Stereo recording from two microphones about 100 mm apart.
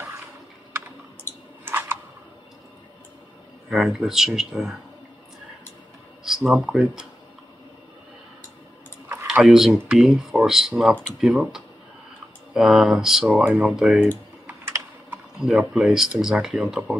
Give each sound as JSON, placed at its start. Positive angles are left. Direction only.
{"t": 1.6, "sound": "a sound", "side_deg": -20}
{"t": 3.7, "sound": "speech", "side_deg": -5}
{"t": 6.2, "sound": "speech", "side_deg": -5}
{"t": 9.3, "sound": "speech", "side_deg": -5}
{"t": 14.6, "sound": "computer keyboard", "side_deg": -25}
{"t": 15.3, "sound": "speech", "side_deg": -5}